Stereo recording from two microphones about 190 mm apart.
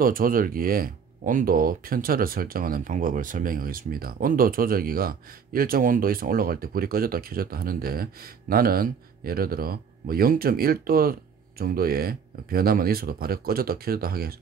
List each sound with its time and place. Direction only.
0.0 s speech: 50° right (ahead or behind)